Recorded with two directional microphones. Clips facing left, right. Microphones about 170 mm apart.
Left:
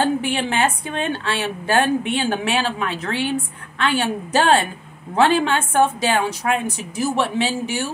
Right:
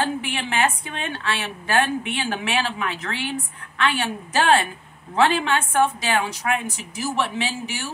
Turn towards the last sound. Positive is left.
turn(degrees=35)  # may be behind; listen again after turning